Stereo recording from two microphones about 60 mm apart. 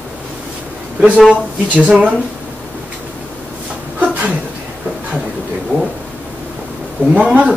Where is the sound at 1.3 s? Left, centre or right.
Right.